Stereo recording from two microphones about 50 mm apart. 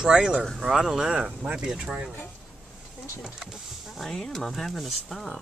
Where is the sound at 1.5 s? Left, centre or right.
Centre.